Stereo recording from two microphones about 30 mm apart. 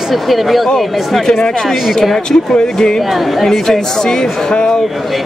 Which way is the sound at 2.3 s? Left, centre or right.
Left.